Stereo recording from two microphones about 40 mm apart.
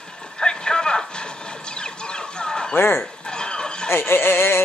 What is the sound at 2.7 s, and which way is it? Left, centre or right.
Fowl, left.